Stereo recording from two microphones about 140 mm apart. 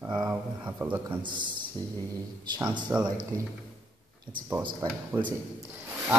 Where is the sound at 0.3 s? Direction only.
15° right (ahead or behind).